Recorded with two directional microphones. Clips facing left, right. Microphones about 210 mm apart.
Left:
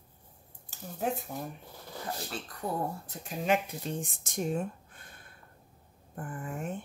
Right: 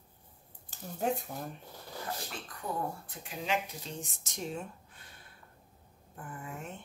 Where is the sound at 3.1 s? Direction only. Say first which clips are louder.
Left 6 dB; 50° left (ahead or behind).